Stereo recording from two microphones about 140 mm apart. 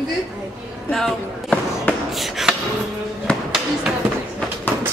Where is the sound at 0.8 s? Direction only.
5° left (ahead or behind).